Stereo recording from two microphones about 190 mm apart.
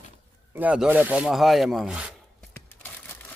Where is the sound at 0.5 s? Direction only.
5° right (ahead or behind).